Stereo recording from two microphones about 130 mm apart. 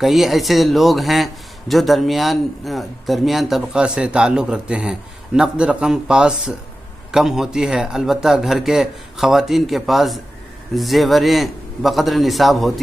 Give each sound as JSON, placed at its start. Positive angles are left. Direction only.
{"t": 0.0, "sound": "a man's voice", "side_deg": 0}